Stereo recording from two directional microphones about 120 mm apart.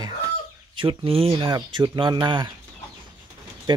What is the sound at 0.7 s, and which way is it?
Speech, 50° right (ahead or behind).